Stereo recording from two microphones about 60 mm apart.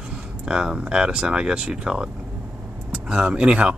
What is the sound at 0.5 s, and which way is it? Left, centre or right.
Speech, centre.